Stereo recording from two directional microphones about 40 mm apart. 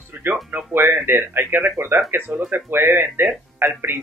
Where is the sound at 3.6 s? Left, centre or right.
Right.